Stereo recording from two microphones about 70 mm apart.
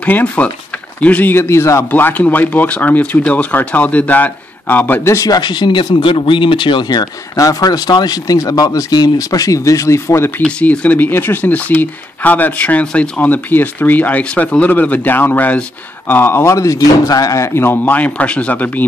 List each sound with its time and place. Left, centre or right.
0.0 s speech: left
1.3 s a man's voice: left
1.9 s speech: left
5.0 s speech: left
5.3 s speech: left
7.3 s speech: left
10.4 s speech: centre
13.2 s a man's voice: left
16.5 s speech: left
17.6 s speech: left